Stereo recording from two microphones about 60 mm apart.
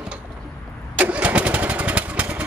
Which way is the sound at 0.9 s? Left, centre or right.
Right.